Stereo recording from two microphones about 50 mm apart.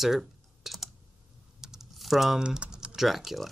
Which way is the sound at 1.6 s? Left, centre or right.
Centre.